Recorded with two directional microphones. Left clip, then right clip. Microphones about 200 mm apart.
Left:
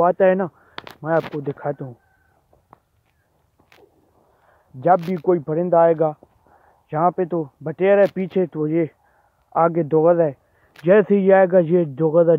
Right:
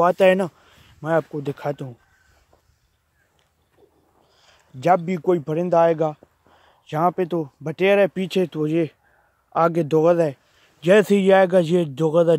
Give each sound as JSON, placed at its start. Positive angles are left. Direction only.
{"t": 0.0, "sound": "speech", "side_deg": -40}
{"t": 4.5, "sound": "a man's voice", "side_deg": -35}